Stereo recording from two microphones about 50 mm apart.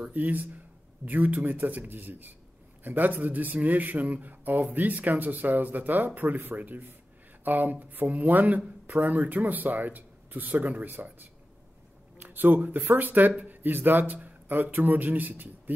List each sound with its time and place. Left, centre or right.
0.1 s speech: right